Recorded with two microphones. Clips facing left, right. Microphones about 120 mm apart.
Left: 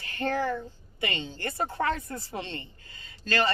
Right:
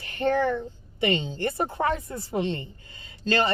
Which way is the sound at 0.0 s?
20° right (ahead or behind).